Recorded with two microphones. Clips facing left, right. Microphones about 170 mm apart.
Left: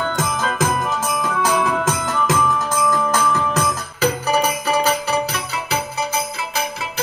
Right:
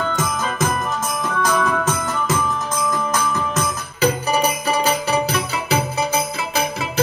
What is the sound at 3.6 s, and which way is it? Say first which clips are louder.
Music: even; 20° right (ahead or behind).